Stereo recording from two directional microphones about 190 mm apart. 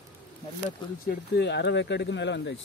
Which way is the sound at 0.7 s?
55° left (ahead or behind).